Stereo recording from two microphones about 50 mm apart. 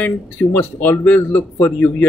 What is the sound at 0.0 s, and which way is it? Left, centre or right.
Speech, left.